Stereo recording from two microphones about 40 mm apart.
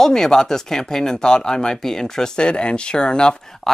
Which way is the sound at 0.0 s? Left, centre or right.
Centre.